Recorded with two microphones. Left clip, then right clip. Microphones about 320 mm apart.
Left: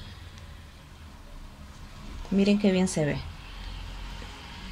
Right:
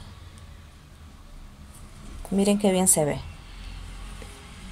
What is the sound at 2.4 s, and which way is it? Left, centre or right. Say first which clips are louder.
Speech: right 3 dB; right.